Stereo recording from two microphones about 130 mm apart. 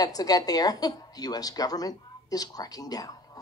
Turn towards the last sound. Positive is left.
turn(degrees=30)  # may be behind; listen again after turning